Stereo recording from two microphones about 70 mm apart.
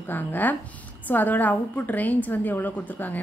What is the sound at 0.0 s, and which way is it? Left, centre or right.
A woman's voice, left.